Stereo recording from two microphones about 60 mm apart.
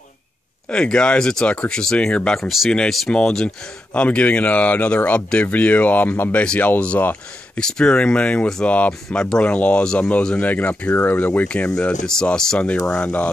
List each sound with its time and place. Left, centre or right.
0.7 s speech: centre; by 6.3 s left
6.3 s speech: left
11.4 s speech: centre